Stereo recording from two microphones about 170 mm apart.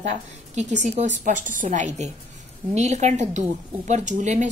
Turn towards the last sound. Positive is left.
turn(degrees=-45)  # may be behind; listen again after turning